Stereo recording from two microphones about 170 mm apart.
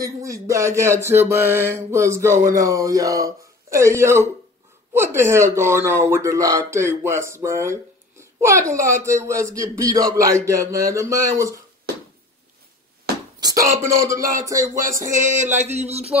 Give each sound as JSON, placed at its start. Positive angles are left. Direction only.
{"t": 0.2, "sound": "a child's voice", "side_deg": -20}
{"t": 2.3, "sound": "speech", "side_deg": -50}
{"t": 2.6, "sound": "a man's voice", "side_deg": -20}
{"t": 13.4, "sound": "speech", "side_deg": -20}
{"t": 15.1, "sound": "a sound", "side_deg": -45}